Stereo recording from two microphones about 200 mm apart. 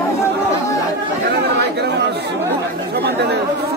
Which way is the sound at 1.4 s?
55° right (ahead or behind).